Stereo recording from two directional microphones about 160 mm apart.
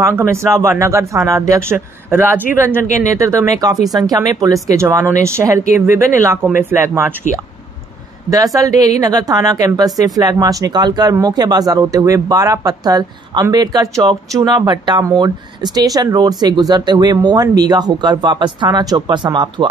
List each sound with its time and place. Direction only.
0.0 s speech: 15° right (ahead or behind)
8.3 s speech: 20° right (ahead or behind)